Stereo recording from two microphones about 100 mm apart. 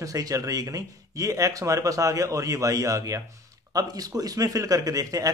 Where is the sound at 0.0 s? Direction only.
35° right (ahead or behind).